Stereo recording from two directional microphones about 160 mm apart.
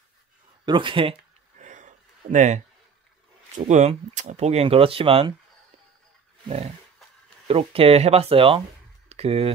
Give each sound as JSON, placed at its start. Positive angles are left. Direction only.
{"t": 0.7, "sound": "speech", "side_deg": -30}
{"t": 1.6, "sound": "a sound", "side_deg": -50}
{"t": 3.5, "sound": "speech", "side_deg": -45}
{"t": 7.4, "sound": "speech", "side_deg": -35}